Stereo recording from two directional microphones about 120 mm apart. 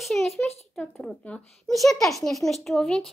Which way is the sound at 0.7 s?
5° left (ahead or behind).